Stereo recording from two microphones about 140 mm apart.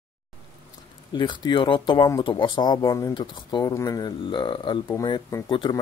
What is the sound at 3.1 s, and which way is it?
Speech, 35° left (ahead or behind).